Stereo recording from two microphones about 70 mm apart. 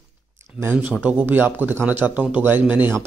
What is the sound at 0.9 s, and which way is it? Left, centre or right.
Speech, right.